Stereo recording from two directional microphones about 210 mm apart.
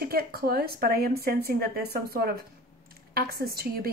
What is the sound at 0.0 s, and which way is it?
A woman's voice, 45° right (ahead or behind).